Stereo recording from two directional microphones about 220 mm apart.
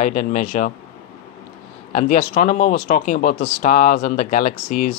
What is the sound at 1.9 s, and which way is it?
Speech, 35° left (ahead or behind).